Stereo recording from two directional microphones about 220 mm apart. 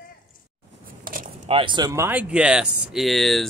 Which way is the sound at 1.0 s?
40° right (ahead or behind).